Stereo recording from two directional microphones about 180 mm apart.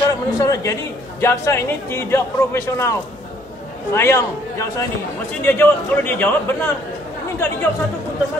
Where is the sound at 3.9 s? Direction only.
15° left (ahead or behind).